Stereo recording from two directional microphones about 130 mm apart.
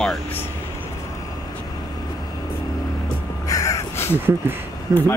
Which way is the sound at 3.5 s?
25° left (ahead or behind).